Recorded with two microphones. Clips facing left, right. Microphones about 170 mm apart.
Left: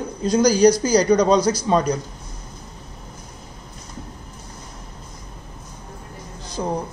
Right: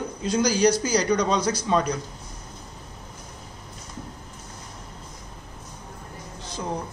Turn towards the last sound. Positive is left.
turn(degrees=40)  # may be behind; listen again after turning